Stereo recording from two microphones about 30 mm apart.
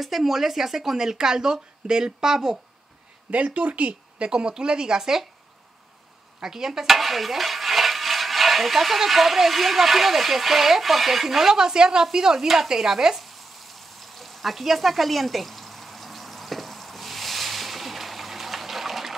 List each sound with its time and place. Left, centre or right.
0.0 s speech: centre
3.3 s speech: right
4.2 s speech: right
6.4 s speech: centre
6.9 s speech: centre
11.5 s speech: right
13.2 s frying: centre